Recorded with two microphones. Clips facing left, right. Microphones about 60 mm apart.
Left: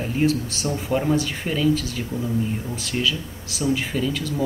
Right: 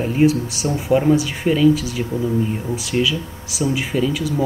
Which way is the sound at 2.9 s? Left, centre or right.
Right.